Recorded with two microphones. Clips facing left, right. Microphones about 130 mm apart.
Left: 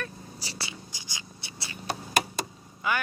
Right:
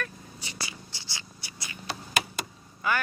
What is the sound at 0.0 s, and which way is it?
Vehicle, 30° left (ahead or behind).